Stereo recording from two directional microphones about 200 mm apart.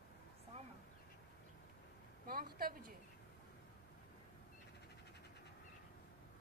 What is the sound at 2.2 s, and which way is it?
Speech, 45° right (ahead or behind).